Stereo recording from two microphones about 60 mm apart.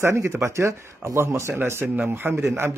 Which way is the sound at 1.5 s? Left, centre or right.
Right.